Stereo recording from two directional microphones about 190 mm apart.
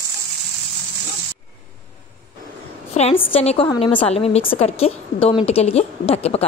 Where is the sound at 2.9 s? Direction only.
35° left (ahead or behind).